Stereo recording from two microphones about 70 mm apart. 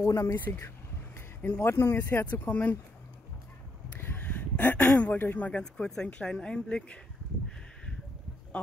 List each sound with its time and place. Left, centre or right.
0.0 s speech: left
3.9 s a sound: left
5.0 s speech: left
5.6 s speech: centre